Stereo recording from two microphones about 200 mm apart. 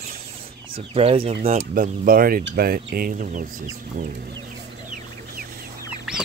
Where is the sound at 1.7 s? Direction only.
45° right (ahead or behind).